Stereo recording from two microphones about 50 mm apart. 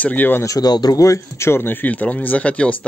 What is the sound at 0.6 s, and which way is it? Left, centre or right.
Speech, left.